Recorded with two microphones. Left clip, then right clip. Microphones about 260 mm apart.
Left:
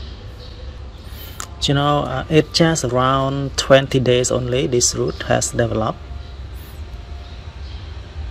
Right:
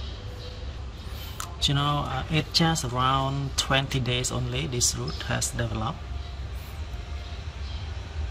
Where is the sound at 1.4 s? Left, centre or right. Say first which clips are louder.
Left 7 dB; centre.